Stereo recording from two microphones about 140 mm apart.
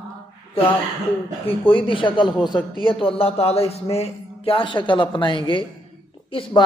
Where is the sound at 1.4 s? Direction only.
40° left (ahead or behind).